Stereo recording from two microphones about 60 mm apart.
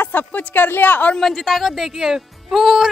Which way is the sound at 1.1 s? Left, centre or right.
Centre.